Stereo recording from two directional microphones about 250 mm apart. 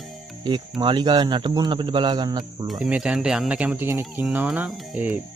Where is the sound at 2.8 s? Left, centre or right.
Centre.